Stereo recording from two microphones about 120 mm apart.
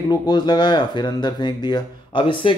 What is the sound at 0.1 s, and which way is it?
Speech, 35° left (ahead or behind).